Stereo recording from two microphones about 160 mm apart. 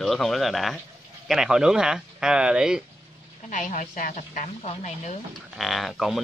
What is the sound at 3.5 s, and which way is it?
Speech, 50° left (ahead or behind).